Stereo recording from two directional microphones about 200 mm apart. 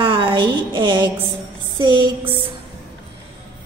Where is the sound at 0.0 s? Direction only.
25° right (ahead or behind).